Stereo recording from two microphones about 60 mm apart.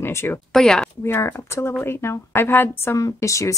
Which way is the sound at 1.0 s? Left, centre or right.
Left.